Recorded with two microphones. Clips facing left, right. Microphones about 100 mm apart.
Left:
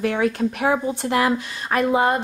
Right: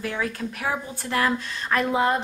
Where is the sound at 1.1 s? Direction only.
15° left (ahead or behind).